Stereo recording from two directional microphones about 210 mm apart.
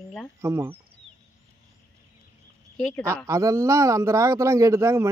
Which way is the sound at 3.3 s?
15° right (ahead or behind).